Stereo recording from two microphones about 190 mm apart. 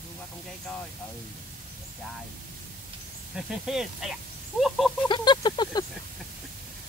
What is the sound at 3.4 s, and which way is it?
Speech, centre (ahead or behind).